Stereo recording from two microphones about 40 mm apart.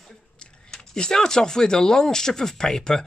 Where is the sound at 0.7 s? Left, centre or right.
Centre.